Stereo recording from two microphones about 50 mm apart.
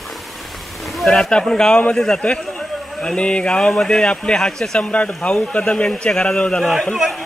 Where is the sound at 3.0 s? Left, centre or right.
Left.